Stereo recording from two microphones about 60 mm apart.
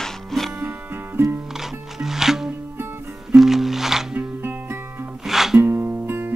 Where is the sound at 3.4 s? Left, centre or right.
Centre.